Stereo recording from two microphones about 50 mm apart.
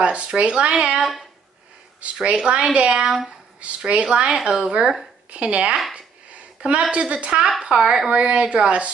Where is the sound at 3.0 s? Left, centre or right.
Centre.